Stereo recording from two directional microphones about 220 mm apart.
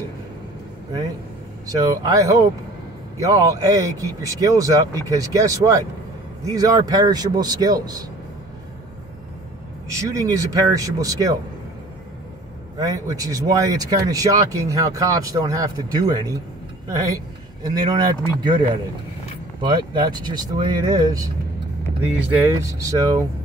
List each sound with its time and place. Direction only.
1.7 s speech: 15° right (ahead or behind)
9.9 s speech: 15° right (ahead or behind)
12.7 s speech: 15° right (ahead or behind)